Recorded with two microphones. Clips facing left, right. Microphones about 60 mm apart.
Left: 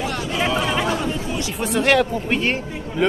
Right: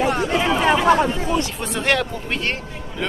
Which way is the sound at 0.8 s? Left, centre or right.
Right.